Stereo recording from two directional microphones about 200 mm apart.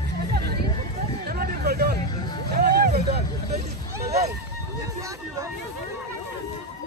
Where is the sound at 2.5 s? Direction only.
50° right (ahead or behind).